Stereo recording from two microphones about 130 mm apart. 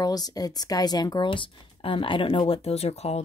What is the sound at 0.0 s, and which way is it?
A woman's voice, 30° left (ahead or behind).